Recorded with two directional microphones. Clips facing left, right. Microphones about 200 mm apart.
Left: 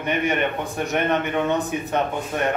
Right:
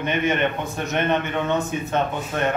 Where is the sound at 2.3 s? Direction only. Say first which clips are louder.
Right 1 dB; 15° left (ahead or behind).